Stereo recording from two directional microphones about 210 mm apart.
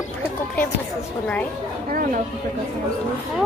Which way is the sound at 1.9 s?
40° right (ahead or behind).